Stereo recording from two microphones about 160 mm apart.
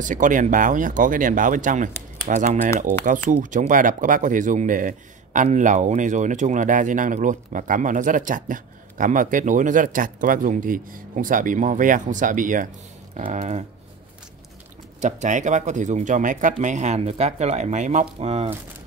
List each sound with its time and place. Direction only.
0.0 s speech: 55° right (ahead or behind)
13.1 s speech: 45° right (ahead or behind)
15.0 s speech: 50° right (ahead or behind)